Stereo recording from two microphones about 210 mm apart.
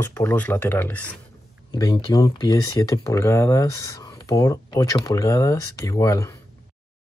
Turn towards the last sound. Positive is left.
turn(degrees=15)  # may be behind; listen again after turning